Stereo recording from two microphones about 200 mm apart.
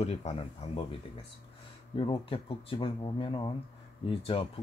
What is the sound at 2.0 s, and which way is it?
Speech, 25° left (ahead or behind).